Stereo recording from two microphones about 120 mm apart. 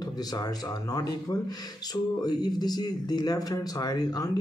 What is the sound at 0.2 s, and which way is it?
Speech, 30° left (ahead or behind).